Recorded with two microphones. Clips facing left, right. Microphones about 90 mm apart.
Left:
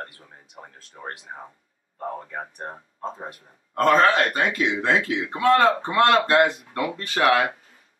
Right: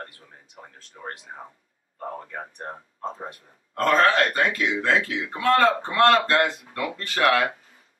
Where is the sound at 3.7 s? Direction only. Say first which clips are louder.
Left 2 dB; 15° left (ahead or behind).